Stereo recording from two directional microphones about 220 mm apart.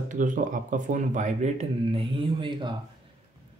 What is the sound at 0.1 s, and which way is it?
Speech, 35° right (ahead or behind).